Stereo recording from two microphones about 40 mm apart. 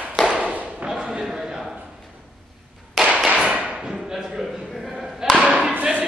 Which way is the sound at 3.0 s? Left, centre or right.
Centre.